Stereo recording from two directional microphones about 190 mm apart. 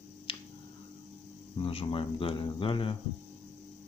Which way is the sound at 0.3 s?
30° left (ahead or behind).